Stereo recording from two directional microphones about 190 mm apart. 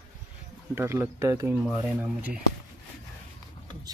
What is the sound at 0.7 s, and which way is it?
Speech, 10° right (ahead or behind).